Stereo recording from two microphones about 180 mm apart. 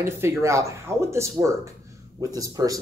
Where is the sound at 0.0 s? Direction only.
15° right (ahead or behind).